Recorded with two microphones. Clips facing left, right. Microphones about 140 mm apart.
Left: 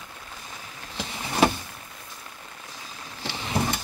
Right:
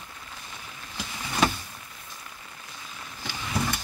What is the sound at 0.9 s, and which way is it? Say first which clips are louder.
Vehicle: left 3 dB; 35° left (ahead or behind).